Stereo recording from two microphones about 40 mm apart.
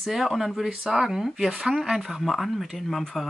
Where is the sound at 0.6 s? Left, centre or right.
Centre.